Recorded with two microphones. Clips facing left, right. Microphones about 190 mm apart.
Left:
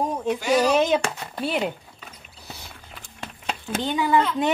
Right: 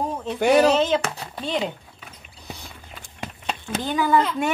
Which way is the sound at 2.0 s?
5° right (ahead or behind).